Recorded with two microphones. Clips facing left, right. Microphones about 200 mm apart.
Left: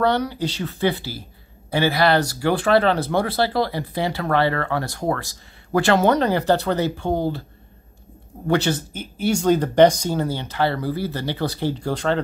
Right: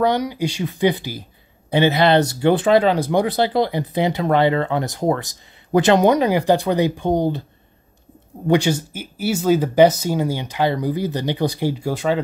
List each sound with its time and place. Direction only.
0.0 s speech: 10° right (ahead or behind)
8.5 s speech: 10° right (ahead or behind)